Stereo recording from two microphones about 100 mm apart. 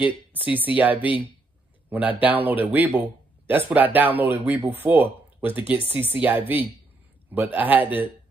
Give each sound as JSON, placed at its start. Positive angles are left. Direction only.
{"t": 0.7, "sound": "speech", "side_deg": -15}